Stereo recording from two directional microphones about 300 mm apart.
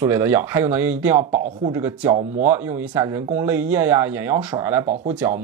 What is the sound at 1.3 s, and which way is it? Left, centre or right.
Speech, right.